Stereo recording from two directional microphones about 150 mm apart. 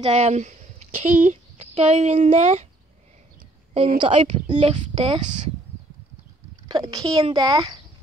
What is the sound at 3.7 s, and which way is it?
A woman's voice, 35° right (ahead or behind).